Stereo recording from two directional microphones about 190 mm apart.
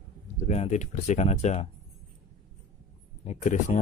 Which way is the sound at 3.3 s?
40° left (ahead or behind).